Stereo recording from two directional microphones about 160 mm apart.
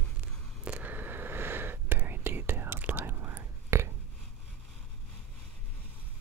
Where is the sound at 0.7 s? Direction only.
10° right (ahead or behind).